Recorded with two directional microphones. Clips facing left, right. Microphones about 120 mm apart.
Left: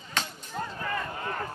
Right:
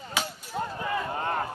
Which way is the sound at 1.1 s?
40° right (ahead or behind).